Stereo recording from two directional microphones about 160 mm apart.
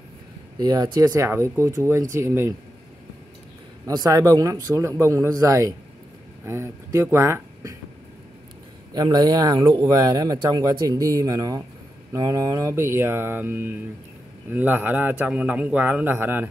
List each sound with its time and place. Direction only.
0.6 s a man's voice: 25° right (ahead or behind)
3.8 s speech: 25° right (ahead or behind)
8.9 s a man's voice: 25° right (ahead or behind)